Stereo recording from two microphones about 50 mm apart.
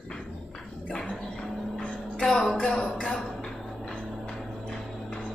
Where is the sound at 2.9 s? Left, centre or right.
Centre.